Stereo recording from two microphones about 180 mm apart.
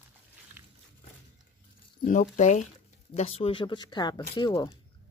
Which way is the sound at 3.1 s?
35° left (ahead or behind).